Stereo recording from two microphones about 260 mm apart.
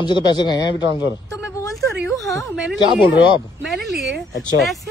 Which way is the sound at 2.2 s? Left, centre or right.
Centre.